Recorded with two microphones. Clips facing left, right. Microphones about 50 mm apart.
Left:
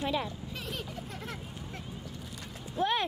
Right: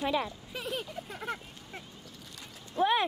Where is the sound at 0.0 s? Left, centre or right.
Centre.